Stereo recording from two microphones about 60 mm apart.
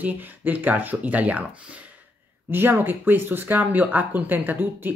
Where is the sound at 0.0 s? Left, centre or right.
Right.